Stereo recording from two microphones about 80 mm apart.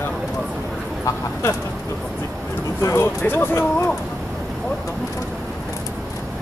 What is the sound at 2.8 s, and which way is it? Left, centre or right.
Speech, left.